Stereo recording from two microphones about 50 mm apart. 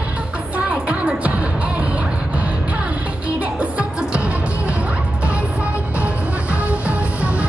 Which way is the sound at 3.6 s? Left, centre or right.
Right.